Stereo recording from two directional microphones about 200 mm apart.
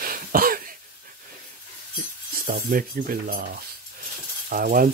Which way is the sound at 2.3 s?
45° right (ahead or behind).